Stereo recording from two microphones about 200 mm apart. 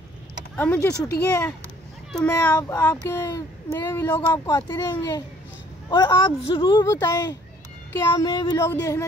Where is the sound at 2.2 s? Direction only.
15° left (ahead or behind).